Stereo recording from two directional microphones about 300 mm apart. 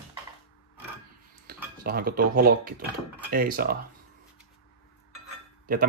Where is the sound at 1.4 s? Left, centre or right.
Right.